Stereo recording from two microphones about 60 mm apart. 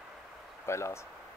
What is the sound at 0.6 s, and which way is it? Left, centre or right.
Speech, left.